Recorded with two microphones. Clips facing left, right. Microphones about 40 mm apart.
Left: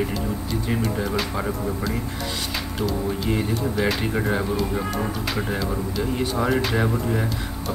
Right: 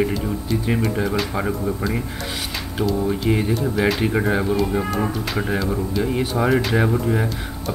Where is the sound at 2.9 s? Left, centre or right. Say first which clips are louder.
Right 6 dB; centre.